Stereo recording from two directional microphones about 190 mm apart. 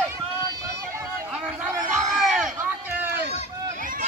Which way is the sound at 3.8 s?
45° right (ahead or behind).